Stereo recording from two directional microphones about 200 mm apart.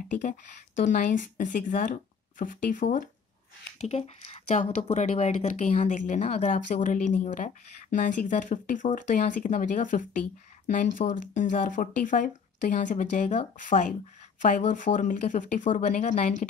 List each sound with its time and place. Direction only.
0.2 s speech: 40° left (ahead or behind)